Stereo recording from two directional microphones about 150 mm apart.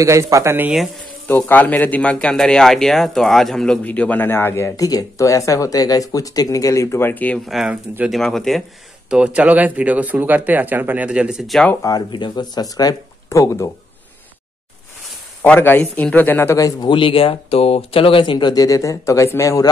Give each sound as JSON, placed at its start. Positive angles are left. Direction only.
{"t": 0.0, "sound": "speech", "side_deg": -20}
{"t": 1.5, "sound": "a man's voice", "side_deg": 10}
{"t": 11.8, "sound": "speech", "side_deg": 30}
{"t": 15.4, "sound": "speech", "side_deg": 10}
{"t": 16.9, "sound": "speech", "side_deg": 35}